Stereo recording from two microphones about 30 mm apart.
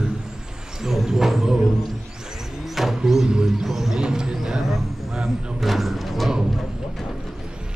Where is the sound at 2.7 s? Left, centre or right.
Centre.